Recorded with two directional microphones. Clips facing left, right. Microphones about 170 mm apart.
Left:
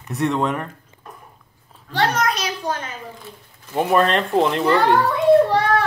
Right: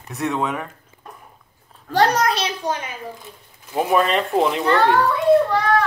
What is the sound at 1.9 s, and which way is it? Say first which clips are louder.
A child's voice: right 3 dB; 40° right (ahead or behind).